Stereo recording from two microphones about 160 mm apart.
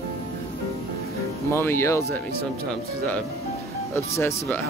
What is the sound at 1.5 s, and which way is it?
Speech, 15° left (ahead or behind).